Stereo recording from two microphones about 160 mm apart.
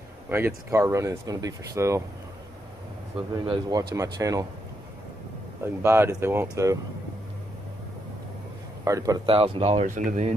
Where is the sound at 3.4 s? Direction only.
25° right (ahead or behind).